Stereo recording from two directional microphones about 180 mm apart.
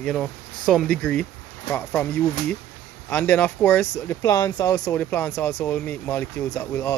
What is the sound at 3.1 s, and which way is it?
Speech, 10° left (ahead or behind).